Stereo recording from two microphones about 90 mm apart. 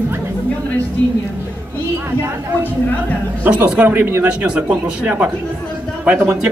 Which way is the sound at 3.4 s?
15° right (ahead or behind).